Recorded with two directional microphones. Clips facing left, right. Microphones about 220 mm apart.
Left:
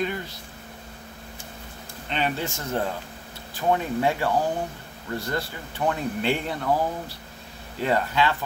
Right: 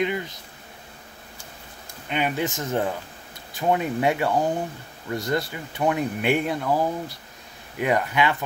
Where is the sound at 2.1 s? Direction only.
15° right (ahead or behind).